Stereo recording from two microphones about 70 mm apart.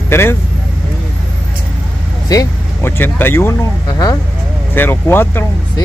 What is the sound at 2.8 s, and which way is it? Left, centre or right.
Speech, left.